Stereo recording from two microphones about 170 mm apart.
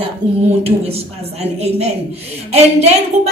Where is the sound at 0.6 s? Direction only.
35° right (ahead or behind).